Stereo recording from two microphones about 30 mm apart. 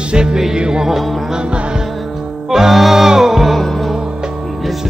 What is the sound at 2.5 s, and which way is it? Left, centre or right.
Music, centre.